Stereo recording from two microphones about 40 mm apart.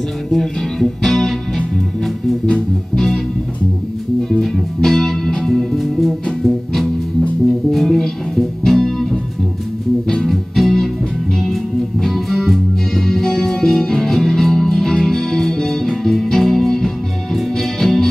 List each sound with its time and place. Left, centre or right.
0.3 s music: centre
4.2 s music: centre
10.2 s music: centre